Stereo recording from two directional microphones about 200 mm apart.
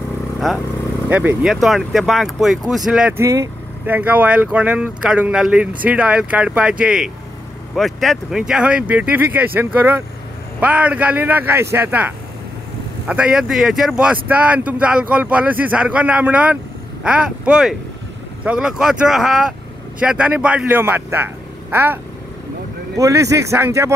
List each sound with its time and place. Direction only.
1.1 s speech: 5° right (ahead or behind)